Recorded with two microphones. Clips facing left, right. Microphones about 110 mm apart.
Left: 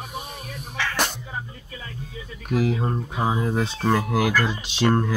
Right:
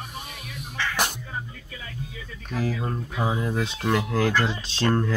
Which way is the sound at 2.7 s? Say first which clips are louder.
Left 3 dB; 30° left (ahead or behind).